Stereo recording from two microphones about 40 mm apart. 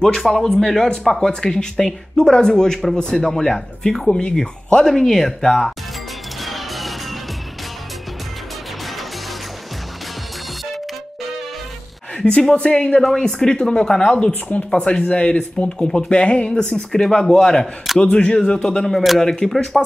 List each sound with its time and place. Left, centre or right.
0.0 s speech: centre
4.1 s speech: left
4.4 s speech: centre
6.4 s music: centre
12.2 s speech: left
14.8 s speech: left; by 17.6 s centre
18.0 s speech: left
18.9 s speech: centre